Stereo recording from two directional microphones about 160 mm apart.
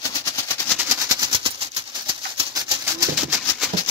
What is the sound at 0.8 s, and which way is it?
Maraca, 20° right (ahead or behind).